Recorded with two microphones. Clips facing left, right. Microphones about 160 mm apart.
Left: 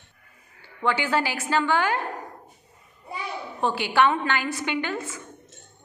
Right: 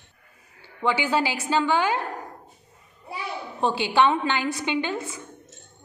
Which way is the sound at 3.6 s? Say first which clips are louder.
Right 1 dB; 20° right (ahead or behind).